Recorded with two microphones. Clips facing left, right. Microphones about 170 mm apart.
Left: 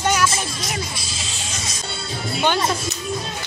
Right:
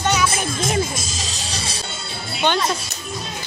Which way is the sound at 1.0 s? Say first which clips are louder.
Right 2 dB; 40° right (ahead or behind).